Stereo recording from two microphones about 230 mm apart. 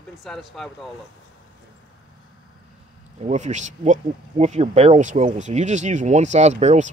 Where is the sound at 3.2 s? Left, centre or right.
Right.